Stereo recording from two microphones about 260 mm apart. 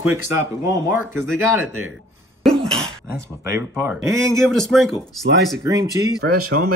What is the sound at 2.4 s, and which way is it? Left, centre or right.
Cough, centre.